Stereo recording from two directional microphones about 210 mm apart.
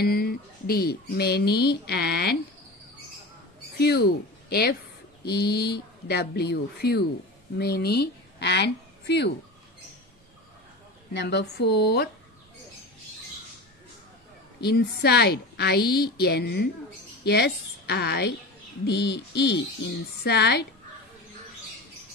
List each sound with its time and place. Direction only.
0.0 s speech: 45° left (ahead or behind)
3.7 s speech: 50° left (ahead or behind)
11.1 s speech: 55° left (ahead or behind)
14.6 s speech: 50° left (ahead or behind)